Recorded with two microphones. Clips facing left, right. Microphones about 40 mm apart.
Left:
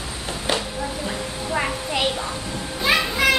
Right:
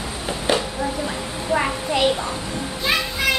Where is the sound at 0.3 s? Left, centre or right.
Centre.